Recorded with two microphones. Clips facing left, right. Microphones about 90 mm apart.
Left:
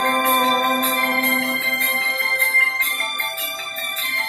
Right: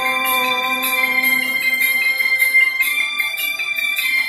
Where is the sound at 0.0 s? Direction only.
30° left (ahead or behind).